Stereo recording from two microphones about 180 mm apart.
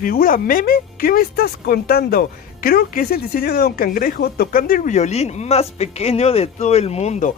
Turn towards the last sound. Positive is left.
turn(degrees=40)  # may be behind; listen again after turning